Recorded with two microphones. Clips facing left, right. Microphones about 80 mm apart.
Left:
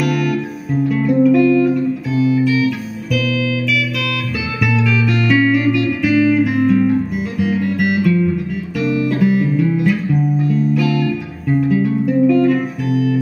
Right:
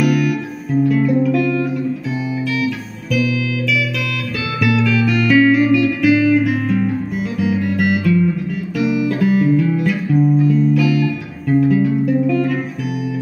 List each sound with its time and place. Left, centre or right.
0.0 s music: centre
2.1 s music: centre
4.6 s music: centre
10.8 s music: centre